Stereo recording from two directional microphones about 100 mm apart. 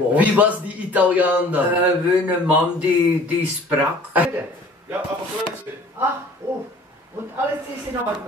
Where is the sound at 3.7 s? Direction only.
15° right (ahead or behind).